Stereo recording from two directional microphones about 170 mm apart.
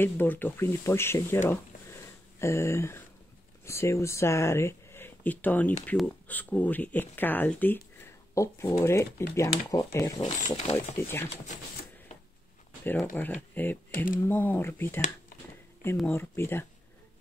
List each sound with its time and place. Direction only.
0.0 s speech: 10° left (ahead or behind)
1.5 s a sound: 15° left (ahead or behind)
3.6 s speech: 15° left (ahead or behind)
10.4 s speech: 40° left (ahead or behind)
11.0 s speech: 15° left (ahead or behind)
13.1 s speech: 10° left (ahead or behind)
16.1 s speech: 15° left (ahead or behind)